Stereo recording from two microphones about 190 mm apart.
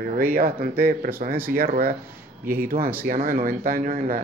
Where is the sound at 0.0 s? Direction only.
50° right (ahead or behind).